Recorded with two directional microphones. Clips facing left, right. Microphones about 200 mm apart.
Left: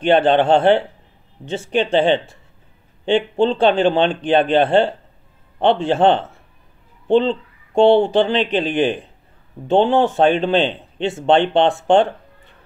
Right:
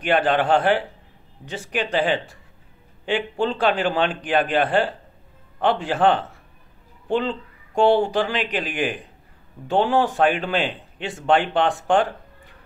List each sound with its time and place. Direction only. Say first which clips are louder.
0.0 s speech: left 6 dB; 25° left (ahead or behind)